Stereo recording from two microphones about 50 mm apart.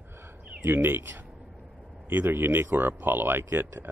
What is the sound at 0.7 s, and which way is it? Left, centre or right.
Speech, right.